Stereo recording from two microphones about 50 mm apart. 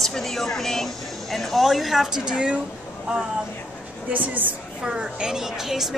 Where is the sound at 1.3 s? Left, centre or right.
Centre; by 2.6 s right.